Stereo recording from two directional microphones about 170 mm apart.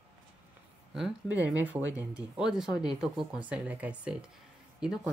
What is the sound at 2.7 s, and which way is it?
Speech, 25° left (ahead or behind).